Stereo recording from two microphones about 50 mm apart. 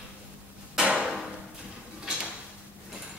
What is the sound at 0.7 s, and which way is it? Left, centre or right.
Hammer, centre.